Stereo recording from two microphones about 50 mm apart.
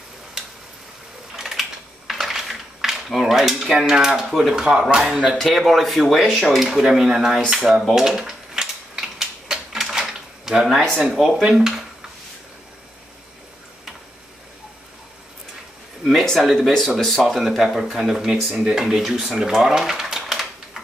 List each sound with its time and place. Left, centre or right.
1.3 s typing: centre
4.3 s speech: centre
4.6 s speech: centre
5.7 s speech: centre
8.2 s typewriter: centre
10.8 s speech: centre
16.0 s speech: centre
16.3 s speech: centre